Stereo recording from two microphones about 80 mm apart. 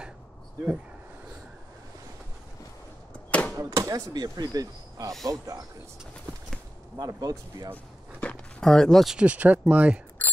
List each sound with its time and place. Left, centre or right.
3.3 s a sound: centre
3.5 s speech: right
7.0 s speech: right
7.7 s a sound: centre
8.6 s speech: centre
9.1 s speech: centre